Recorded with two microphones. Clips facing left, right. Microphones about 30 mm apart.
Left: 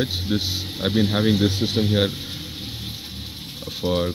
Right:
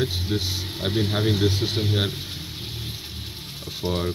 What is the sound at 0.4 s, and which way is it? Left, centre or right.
Speech, left.